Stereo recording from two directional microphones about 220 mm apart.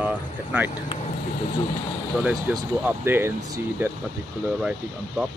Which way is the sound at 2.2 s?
5° right (ahead or behind).